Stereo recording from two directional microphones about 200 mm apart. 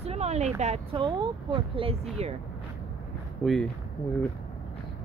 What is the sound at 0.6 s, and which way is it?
Speech, 30° right (ahead or behind).